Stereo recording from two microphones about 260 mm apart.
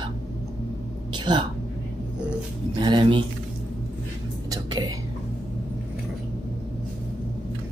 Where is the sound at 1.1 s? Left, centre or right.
Centre.